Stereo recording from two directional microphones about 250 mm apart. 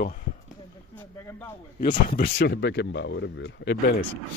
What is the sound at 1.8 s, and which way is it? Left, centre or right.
Speech, left.